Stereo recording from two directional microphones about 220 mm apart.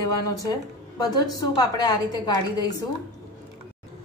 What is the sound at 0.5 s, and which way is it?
A woman's voice, 15° left (ahead or behind).